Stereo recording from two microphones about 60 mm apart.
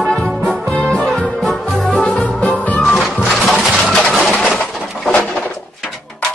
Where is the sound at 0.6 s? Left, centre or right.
Left.